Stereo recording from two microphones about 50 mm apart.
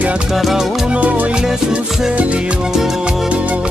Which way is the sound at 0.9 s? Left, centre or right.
Right.